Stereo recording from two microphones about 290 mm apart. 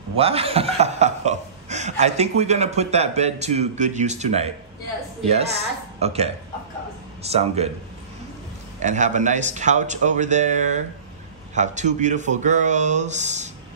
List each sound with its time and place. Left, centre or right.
0.2 s speech: centre
8.7 s speech: right